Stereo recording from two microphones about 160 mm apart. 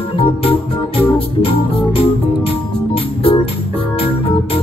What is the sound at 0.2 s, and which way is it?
Organ, 35° left (ahead or behind).